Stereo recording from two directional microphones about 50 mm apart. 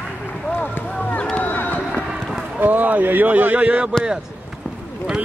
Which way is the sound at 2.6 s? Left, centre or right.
Right.